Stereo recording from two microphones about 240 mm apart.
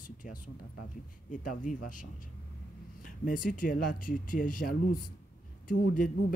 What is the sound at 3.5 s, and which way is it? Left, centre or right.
Speech, left.